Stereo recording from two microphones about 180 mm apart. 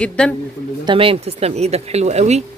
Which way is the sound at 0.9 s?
30° right (ahead or behind).